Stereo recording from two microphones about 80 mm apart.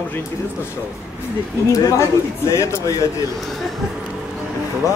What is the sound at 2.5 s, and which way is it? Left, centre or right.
Speech, left.